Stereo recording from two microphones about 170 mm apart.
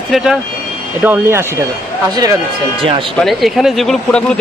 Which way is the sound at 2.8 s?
30° right (ahead or behind).